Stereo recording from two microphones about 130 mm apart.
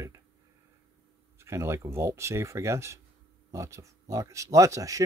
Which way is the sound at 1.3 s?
20° right (ahead or behind).